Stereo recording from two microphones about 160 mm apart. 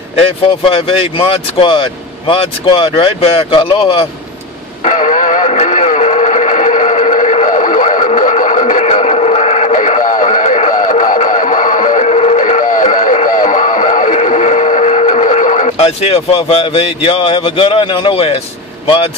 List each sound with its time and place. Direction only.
0.2 s speech: 35° left (ahead or behind)
4.8 s radio: 50° left (ahead or behind)
15.8 s speech: 40° left (ahead or behind)